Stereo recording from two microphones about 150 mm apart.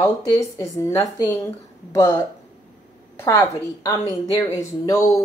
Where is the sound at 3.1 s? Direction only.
20° left (ahead or behind).